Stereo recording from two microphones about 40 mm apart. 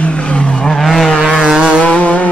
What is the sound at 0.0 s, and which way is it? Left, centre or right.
Vehicle, left.